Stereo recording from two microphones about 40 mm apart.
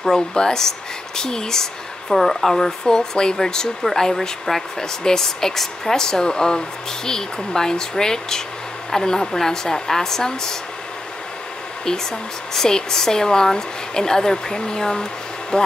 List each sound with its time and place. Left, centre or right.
0.1 s speech: centre
2.8 s speech: centre
11.8 s speech: centre